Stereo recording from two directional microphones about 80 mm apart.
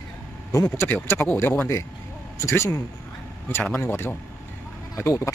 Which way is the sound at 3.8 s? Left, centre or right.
Left.